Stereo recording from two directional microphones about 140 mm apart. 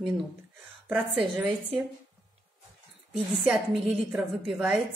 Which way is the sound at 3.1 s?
5° right (ahead or behind).